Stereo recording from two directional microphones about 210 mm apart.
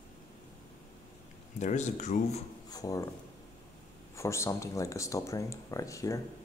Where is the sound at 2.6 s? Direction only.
15° left (ahead or behind).